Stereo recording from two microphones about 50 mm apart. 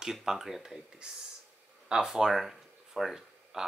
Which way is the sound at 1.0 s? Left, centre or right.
Centre.